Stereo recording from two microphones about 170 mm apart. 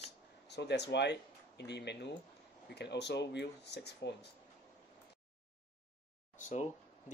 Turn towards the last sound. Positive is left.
turn(degrees=45)  # may be behind; listen again after turning